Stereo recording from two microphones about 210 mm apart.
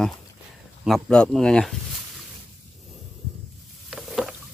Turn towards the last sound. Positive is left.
turn(degrees=0)  # may be behind; listen again after turning